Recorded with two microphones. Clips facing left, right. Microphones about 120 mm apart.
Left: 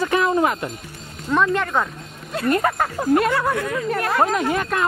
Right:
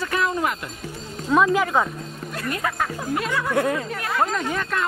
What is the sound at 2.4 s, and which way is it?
Speech, 50° left (ahead or behind).